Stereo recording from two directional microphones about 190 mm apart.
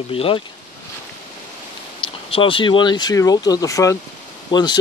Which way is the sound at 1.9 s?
30° left (ahead or behind).